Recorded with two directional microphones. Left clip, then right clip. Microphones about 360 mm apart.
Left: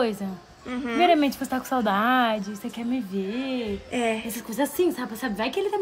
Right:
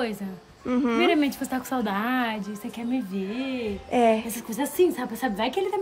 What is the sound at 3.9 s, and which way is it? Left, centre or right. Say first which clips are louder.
Speech: right 7 dB; centre.